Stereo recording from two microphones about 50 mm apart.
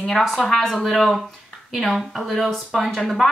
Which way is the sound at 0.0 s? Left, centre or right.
Centre.